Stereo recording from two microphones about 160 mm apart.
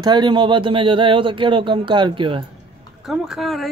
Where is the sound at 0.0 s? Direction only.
30° right (ahead or behind).